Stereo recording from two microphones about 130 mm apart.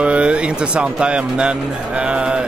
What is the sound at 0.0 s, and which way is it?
Speech, 10° right (ahead or behind).